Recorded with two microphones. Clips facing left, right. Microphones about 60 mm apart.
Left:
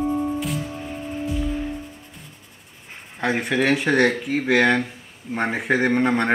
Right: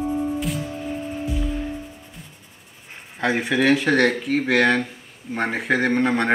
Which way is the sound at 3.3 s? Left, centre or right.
Centre.